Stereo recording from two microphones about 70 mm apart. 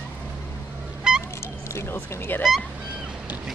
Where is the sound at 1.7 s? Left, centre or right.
Left.